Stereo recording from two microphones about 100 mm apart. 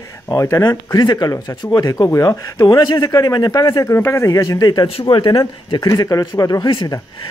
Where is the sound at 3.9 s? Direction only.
25° left (ahead or behind).